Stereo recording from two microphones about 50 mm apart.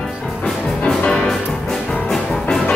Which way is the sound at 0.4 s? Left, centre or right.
Centre.